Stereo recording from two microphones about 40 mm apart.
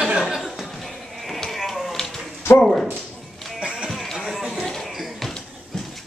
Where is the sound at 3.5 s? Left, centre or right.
Centre.